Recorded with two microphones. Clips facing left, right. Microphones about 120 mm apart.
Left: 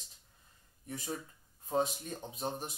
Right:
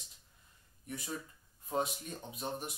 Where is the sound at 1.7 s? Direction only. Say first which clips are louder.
Left 3 dB; 30° left (ahead or behind).